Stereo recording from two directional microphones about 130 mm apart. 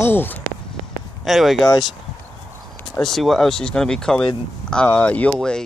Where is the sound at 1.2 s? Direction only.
Centre (ahead or behind).